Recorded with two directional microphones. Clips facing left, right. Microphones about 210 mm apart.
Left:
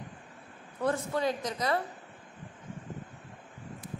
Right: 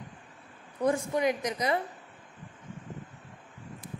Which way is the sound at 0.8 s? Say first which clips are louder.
Right 3 dB; 15° right (ahead or behind).